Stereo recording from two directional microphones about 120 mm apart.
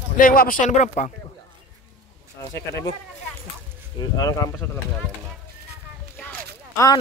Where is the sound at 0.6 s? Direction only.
85° left.